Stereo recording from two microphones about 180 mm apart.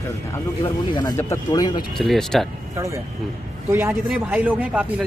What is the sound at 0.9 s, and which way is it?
Speech, 20° left (ahead or behind).